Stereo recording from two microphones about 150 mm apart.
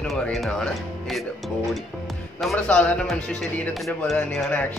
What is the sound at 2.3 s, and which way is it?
Speech, 5° left (ahead or behind).